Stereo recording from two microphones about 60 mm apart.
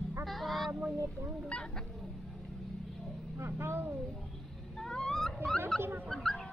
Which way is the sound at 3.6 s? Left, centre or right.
Right.